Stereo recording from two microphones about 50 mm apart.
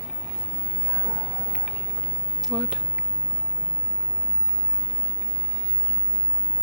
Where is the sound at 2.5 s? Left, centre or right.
Centre.